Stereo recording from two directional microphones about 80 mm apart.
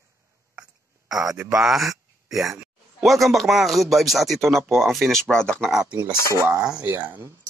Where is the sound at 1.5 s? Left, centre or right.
Centre.